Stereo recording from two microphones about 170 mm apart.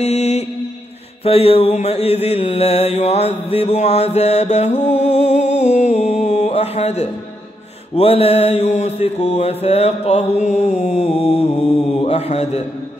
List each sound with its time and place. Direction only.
0.0 s music: 40° left (ahead or behind)
1.2 s mantra: 35° left (ahead or behind)